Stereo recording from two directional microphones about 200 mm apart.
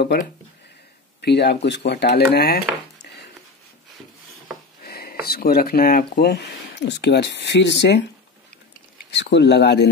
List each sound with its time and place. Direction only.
0.0 s speech: 55° left (ahead or behind)
4.8 s a sound: 50° left (ahead or behind)
5.2 s speech: 50° left (ahead or behind)
9.1 s speech: 60° left (ahead or behind)